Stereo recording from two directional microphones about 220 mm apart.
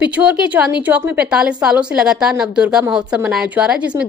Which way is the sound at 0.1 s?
5° right (ahead or behind).